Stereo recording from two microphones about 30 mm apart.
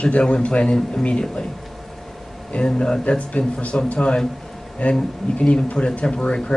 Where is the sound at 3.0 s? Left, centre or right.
Left.